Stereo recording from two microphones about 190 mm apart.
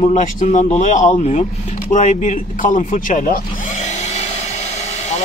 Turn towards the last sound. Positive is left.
turn(degrees=45)  # may be behind; listen again after turning